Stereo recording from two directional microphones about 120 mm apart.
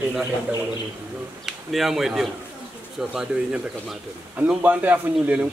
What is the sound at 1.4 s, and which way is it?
A man's voice, centre (ahead or behind).